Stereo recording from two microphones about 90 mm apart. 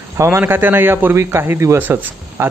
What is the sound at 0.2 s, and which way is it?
Speech, 30° right (ahead or behind).